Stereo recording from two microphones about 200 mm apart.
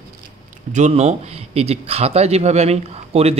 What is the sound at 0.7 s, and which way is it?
Speech, 35° right (ahead or behind).